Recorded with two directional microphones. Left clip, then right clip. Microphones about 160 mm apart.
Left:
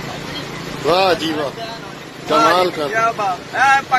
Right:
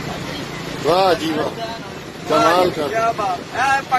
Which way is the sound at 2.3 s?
15° left (ahead or behind).